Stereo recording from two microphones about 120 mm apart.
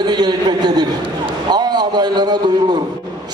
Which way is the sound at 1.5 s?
35° right (ahead or behind).